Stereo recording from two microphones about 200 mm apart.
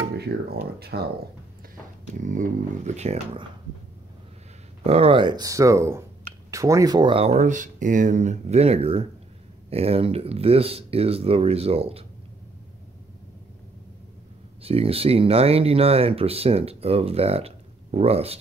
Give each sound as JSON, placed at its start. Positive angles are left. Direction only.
{"t": 0.3, "sound": "speech", "side_deg": -55}
{"t": 2.1, "sound": "speech", "side_deg": -40}
{"t": 4.8, "sound": "speech", "side_deg": -30}
{"t": 14.6, "sound": "speech", "side_deg": -30}